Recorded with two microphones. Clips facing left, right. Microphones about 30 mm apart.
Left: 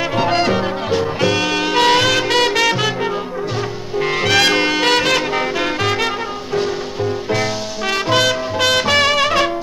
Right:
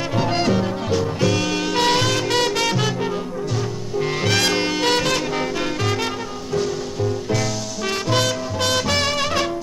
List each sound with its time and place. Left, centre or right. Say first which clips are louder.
0.1 s music: left 2 dB; left
4.0 s music: left 6 dB; left
8.1 s music: left 5 dB; left